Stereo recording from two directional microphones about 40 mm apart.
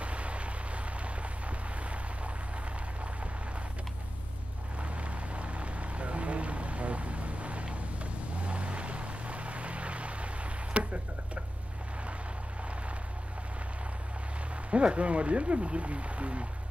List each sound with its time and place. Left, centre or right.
0.0 s a sound: right
5.0 s vehicle: right
14.7 s speech: right